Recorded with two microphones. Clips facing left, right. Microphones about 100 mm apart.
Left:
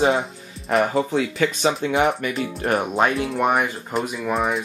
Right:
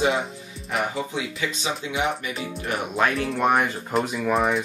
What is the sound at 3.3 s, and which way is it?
Speech, 5° left (ahead or behind).